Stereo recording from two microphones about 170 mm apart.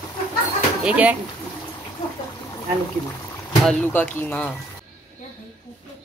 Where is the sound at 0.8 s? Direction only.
10° right (ahead or behind).